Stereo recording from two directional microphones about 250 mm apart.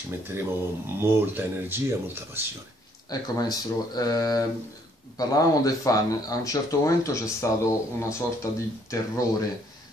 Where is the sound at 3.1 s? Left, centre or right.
Centre.